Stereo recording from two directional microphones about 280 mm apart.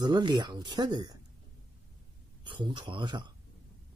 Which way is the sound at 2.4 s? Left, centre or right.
Centre.